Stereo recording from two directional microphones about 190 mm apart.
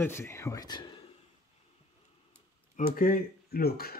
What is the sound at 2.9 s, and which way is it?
Speech, 45° left (ahead or behind).